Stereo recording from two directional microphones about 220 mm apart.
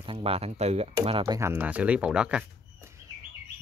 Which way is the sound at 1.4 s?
10° right (ahead or behind).